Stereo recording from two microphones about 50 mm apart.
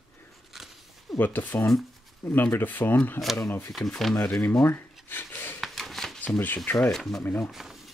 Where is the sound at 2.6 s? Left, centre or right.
Left.